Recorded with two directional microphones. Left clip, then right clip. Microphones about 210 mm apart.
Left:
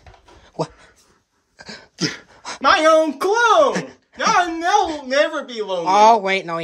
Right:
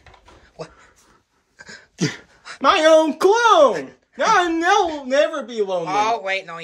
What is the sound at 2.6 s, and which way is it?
Speech, 35° right (ahead or behind).